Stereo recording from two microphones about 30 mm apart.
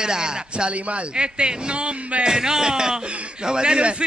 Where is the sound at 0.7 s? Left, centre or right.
Right.